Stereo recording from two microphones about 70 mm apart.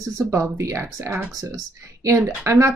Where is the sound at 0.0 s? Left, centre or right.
Right.